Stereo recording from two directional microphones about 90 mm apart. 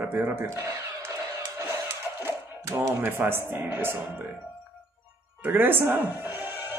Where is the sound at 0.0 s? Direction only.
20° right (ahead or behind).